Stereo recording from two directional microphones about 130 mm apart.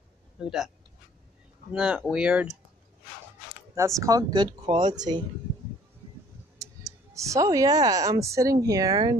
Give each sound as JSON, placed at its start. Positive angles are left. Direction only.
{"t": 0.4, "sound": "speech", "side_deg": -5}
{"t": 1.7, "sound": "speech", "side_deg": -5}
{"t": 3.7, "sound": "speech", "side_deg": -25}
{"t": 4.5, "sound": "speech", "side_deg": -40}
{"t": 4.9, "sound": "speech", "side_deg": -30}
{"t": 7.2, "sound": "speech", "side_deg": -25}